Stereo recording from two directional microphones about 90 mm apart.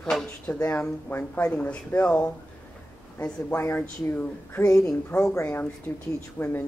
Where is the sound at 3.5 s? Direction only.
25° left (ahead or behind).